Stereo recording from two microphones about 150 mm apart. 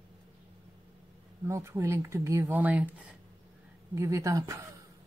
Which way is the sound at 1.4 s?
20° right (ahead or behind).